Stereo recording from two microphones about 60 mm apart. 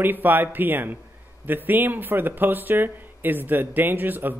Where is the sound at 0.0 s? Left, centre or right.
Right.